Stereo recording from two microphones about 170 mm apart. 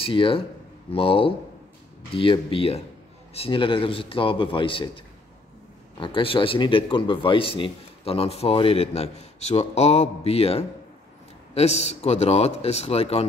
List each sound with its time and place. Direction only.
0.0 s speech: 30° left (ahead or behind)